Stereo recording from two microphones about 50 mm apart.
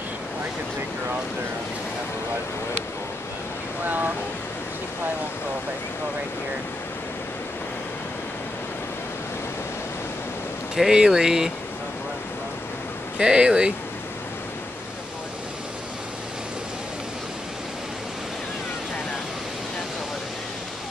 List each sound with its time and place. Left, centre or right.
10.8 s speech: centre
13.2 s speech: centre